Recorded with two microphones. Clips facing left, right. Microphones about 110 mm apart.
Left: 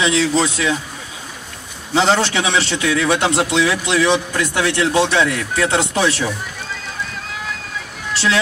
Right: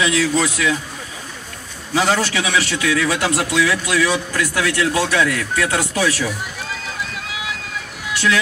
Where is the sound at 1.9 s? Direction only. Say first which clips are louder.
Left 2 dB; 25° left (ahead or behind).